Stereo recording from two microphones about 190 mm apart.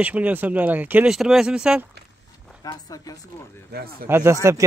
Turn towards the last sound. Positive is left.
turn(degrees=-15)  # may be behind; listen again after turning